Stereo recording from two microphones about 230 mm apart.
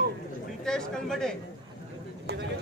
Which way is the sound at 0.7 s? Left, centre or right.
Centre.